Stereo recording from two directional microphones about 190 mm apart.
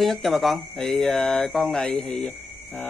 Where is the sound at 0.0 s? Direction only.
Centre (ahead or behind).